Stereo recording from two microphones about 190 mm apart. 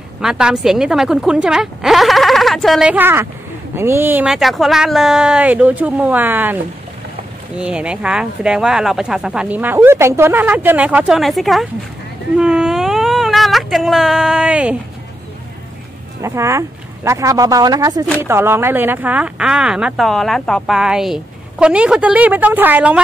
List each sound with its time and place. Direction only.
0.2 s speech: 5° right (ahead or behind)
16.2 s speech: 15° right (ahead or behind)